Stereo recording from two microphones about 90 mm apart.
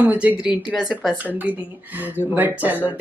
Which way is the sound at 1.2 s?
20° right (ahead or behind).